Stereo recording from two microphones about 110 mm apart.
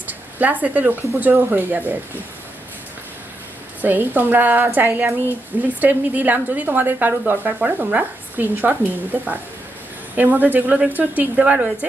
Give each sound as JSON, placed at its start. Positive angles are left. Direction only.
{"t": 0.0, "sound": "a woman's voice", "side_deg": -15}
{"t": 3.8, "sound": "a woman's voice", "side_deg": -15}